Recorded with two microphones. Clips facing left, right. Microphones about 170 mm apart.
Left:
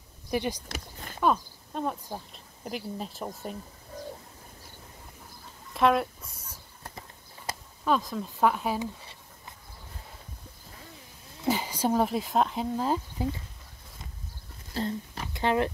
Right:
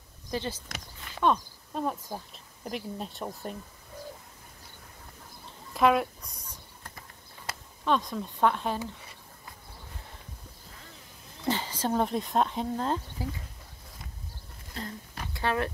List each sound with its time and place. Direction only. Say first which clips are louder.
0.3 s speech: left 4 dB; 15° left (ahead or behind)
0.7 s speech: left 4 dB; 40° left (ahead or behind)
1.2 s speech: even; 5° left (ahead or behind)
5.7 s speech: even; centre (ahead or behind)
6.8 s clip-clop: left 3 dB; 30° left (ahead or behind)
7.8 s speech: left 1 dB; 5° left (ahead or behind)
11.4 s speech: left 3 dB; 10° left (ahead or behind)
14.7 s speech: left 8 dB; 30° left (ahead or behind)